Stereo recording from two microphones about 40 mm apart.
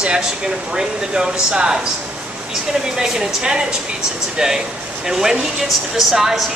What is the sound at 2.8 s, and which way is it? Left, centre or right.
Speech, centre.